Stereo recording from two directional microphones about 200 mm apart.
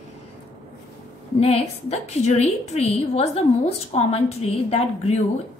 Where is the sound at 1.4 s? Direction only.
30° left (ahead or behind).